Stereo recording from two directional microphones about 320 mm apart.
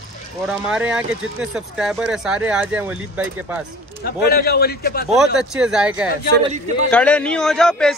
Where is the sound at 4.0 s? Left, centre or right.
Left.